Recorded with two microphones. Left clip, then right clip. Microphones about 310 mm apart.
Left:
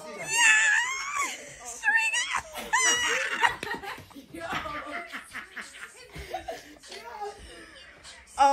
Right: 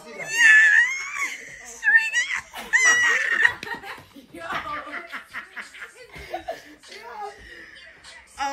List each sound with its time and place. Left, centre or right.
0.2 s baby cry: centre
2.0 s a sound: centre
4.5 s chuckle: right